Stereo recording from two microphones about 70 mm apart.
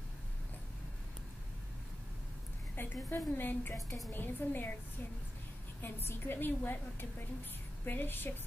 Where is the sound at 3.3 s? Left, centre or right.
Left.